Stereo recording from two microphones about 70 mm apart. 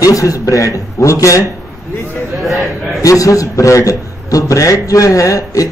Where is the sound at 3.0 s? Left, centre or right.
Left.